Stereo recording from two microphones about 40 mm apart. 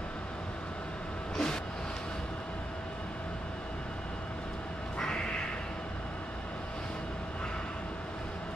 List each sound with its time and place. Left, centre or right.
1.3 s vehicle: centre
4.9 s crow: left